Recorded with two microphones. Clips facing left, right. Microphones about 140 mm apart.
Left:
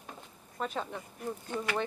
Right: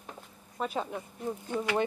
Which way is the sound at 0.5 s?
10° right (ahead or behind).